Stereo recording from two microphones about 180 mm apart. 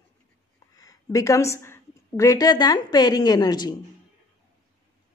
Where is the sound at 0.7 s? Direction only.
20° left (ahead or behind).